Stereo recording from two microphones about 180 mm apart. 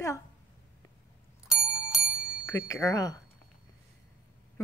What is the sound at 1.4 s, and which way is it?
Bicycle bell, 5° right (ahead or behind).